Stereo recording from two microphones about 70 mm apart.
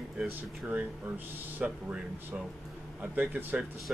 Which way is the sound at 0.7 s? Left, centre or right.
Right.